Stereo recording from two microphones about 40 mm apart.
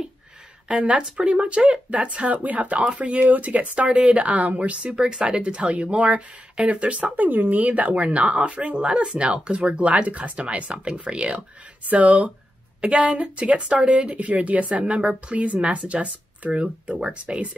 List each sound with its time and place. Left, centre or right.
0.7 s a woman's voice: right
11.3 s a woman's voice: right
14.1 s a woman's voice: right